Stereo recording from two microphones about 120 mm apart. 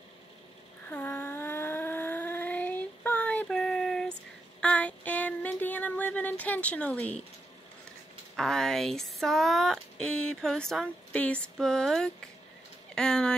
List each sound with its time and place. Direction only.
0.8 s a sound: 15° left (ahead or behind)
4.6 s child singing: 10° left (ahead or behind)
8.4 s speech: 5° left (ahead or behind)